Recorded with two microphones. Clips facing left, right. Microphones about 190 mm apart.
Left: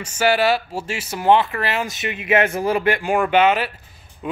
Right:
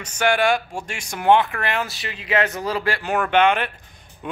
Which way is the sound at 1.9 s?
20° left (ahead or behind).